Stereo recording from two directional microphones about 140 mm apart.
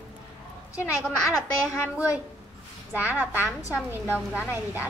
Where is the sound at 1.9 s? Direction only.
10° right (ahead or behind).